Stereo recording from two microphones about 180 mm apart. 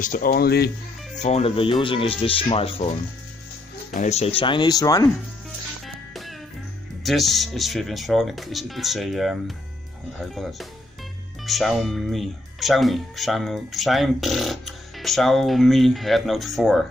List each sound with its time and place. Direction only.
0.0 s speech: 50° left (ahead or behind)
1.2 s speech: 35° left (ahead or behind); by 5.1 s 20° left (ahead or behind)
5.9 s music: centre (ahead or behind)
7.0 s speech: centre (ahead or behind)